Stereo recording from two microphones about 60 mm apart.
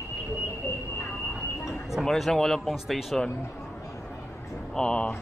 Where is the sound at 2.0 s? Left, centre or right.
Centre.